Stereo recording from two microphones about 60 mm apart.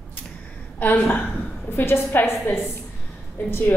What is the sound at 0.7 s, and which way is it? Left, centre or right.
A woman's voice, left.